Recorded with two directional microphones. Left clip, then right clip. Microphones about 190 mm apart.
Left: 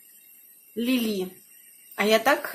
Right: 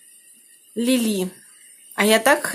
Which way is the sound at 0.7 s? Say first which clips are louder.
Right 5 dB; 20° right (ahead or behind).